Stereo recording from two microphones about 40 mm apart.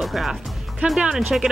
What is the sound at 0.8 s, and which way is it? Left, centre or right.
Speech, centre.